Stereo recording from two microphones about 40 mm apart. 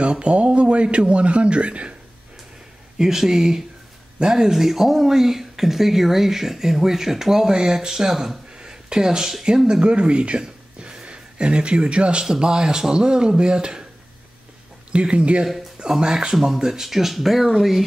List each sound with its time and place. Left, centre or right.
0.0 s a sound: right
0.8 s speech: right
3.0 s speech: centre
8.5 s a sound: centre
9.7 s speech: right
14.9 s speech: right; by 17.8 s centre